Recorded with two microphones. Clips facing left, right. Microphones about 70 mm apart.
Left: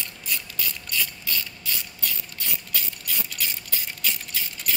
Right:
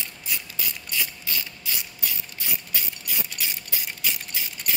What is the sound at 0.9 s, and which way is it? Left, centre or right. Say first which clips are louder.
Mechanisms: left 1 dB; centre.